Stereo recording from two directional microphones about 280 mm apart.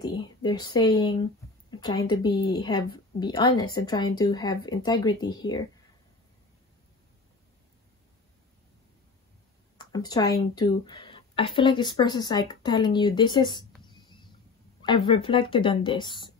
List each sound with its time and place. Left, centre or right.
0.0 s speech: centre
9.8 s speech: centre
13.8 s a sound: centre
14.8 s speech: centre